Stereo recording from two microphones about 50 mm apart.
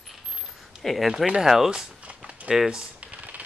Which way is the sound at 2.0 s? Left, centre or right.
Right.